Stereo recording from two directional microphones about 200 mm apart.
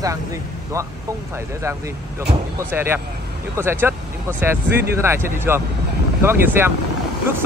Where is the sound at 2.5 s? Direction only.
10° right (ahead or behind).